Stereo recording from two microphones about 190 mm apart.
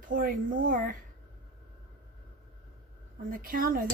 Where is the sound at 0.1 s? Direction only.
45° right (ahead or behind).